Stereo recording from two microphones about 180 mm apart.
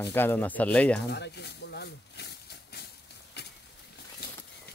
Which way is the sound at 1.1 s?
65° left (ahead or behind).